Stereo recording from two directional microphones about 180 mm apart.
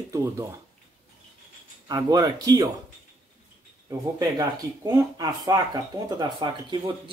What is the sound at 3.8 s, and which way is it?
Speech, 20° right (ahead or behind).